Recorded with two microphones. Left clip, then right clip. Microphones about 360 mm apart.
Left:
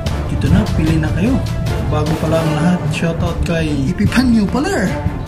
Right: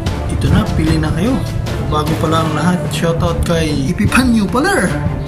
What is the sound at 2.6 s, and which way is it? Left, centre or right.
Speech, centre.